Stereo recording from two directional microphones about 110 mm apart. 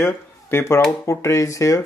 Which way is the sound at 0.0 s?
25° left (ahead or behind).